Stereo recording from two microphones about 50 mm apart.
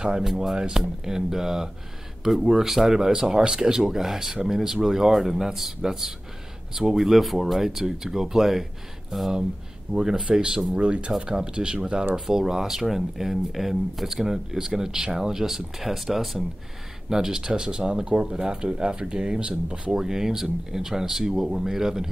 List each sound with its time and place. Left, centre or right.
0.0 s speech: centre
19.9 s speech: centre